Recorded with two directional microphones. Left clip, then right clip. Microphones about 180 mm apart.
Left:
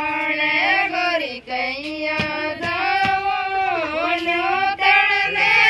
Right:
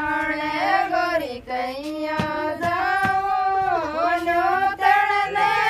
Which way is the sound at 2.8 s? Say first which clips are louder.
Left 3 dB; 35° right (ahead or behind).